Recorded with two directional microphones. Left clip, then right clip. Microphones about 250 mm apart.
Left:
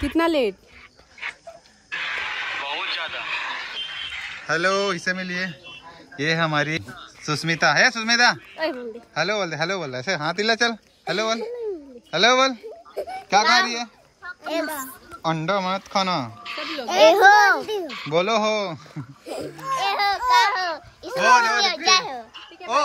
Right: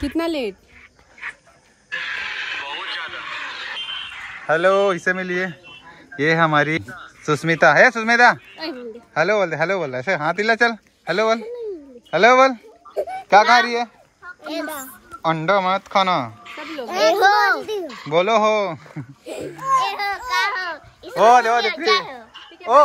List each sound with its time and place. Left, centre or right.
0.0 s speech: centre
2.6 s radio: left
4.5 s a man's voice: centre
15.0 s speech: centre
16.4 s speech: centre
18.0 s speech: centre
20.0 s a sound: left
21.2 s speech: centre
21.9 s a child's voice: left